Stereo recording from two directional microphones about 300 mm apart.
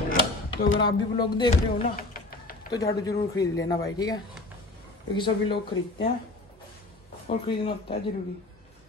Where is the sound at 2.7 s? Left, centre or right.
Centre.